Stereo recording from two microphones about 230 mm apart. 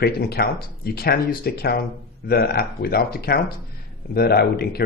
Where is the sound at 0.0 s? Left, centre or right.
Left.